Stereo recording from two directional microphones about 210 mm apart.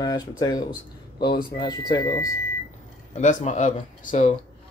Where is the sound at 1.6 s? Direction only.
20° left (ahead or behind).